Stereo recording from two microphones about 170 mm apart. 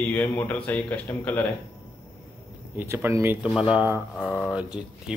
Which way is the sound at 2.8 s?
15° right (ahead or behind).